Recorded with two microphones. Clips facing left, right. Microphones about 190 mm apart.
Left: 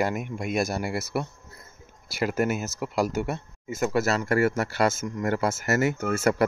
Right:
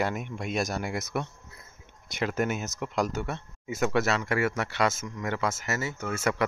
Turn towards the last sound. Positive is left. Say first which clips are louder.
# left 5 dB
turn(degrees=40)  # may be behind; listen again after turning